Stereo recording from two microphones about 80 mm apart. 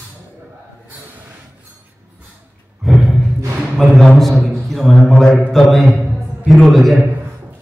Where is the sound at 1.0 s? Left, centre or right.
Right.